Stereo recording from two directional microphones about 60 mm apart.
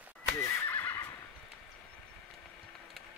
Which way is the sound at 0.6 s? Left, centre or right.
Left.